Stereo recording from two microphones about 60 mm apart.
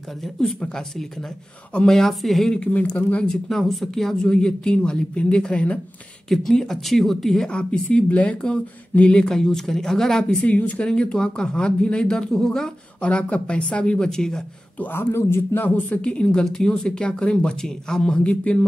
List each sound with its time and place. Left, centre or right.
0.2 s a woman's voice: centre
1.9 s a woman's voice: centre
2.5 s speech: left
3.3 s speech: centre
6.2 s speech: centre
9.3 s speech: centre
10.4 s speech: left
13.2 s speech: left
14.8 s speech: left; by 18.7 s centre